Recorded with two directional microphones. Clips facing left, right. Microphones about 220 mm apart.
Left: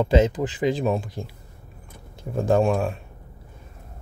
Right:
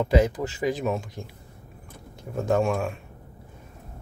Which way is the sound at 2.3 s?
30° left (ahead or behind).